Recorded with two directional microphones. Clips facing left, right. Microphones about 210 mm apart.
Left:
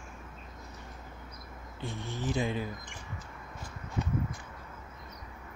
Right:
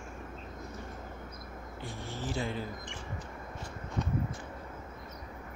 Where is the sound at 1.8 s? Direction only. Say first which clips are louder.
Left 3 dB; 20° left (ahead or behind).